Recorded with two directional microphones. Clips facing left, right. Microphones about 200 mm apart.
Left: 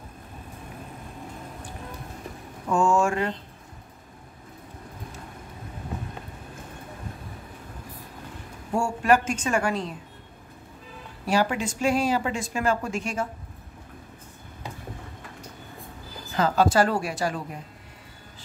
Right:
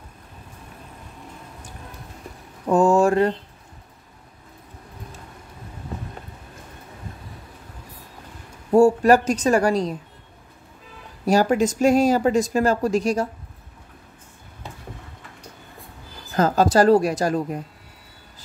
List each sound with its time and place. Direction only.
2.7 s speech: 35° right (ahead or behind)
8.7 s speech: 35° right (ahead or behind)
11.2 s speech: 40° right (ahead or behind)
16.3 s speech: 40° right (ahead or behind)